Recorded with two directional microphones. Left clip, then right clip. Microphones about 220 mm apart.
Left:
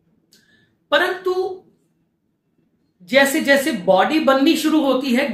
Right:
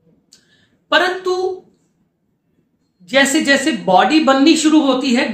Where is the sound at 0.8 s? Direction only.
10° right (ahead or behind).